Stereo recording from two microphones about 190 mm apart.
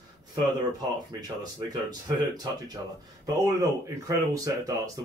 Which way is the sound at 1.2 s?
20° right (ahead or behind).